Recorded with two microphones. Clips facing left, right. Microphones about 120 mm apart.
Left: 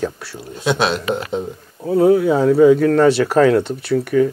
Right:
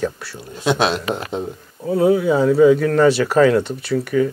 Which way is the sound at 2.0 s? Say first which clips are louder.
Left 2 dB; 40° left (ahead or behind).